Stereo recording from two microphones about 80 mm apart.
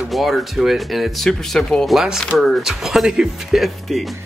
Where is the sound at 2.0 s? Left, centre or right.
Centre.